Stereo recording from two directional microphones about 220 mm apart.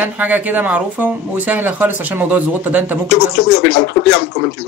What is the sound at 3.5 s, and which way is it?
Speech, 50° left (ahead or behind).